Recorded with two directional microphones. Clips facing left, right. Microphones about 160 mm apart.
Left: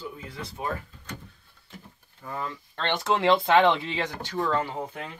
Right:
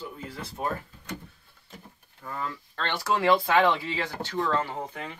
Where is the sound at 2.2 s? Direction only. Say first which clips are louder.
Left 1 dB; 20° left (ahead or behind).